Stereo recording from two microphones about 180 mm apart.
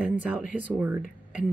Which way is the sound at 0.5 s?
10° right (ahead or behind).